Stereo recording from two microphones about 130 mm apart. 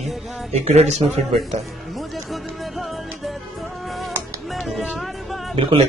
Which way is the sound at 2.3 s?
Centre (ahead or behind).